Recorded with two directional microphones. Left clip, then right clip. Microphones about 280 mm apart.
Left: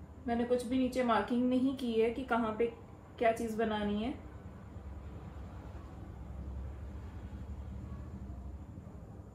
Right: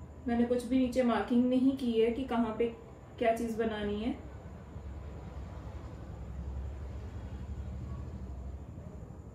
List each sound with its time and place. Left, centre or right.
0.3 s a woman's voice: centre